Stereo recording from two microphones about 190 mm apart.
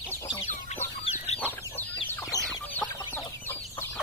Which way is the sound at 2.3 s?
20° left (ahead or behind).